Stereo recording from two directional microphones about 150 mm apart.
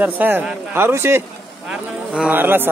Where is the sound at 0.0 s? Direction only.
10° right (ahead or behind).